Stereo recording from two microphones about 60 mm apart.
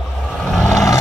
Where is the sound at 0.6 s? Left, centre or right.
Left.